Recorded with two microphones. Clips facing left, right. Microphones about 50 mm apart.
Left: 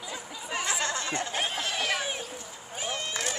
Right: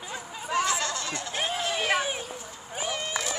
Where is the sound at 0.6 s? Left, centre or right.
Left.